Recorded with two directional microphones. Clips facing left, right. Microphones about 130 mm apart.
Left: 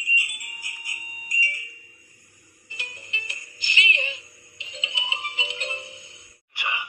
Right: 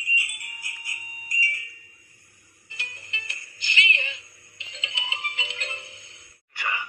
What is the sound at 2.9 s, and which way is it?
Music, 20° left (ahead or behind).